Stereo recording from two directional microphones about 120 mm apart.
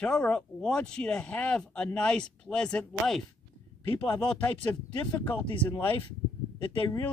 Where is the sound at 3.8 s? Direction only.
15° left (ahead or behind).